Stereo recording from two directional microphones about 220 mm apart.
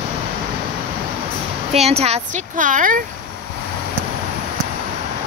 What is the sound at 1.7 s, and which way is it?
Speech, 30° right (ahead or behind).